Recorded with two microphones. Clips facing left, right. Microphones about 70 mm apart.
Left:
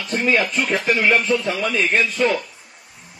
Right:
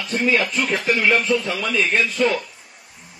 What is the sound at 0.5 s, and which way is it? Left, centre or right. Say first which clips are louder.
A man's voice: left 1 dB; left.